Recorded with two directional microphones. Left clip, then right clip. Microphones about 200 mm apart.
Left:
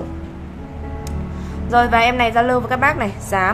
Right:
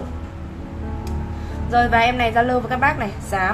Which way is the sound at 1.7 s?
15° left (ahead or behind).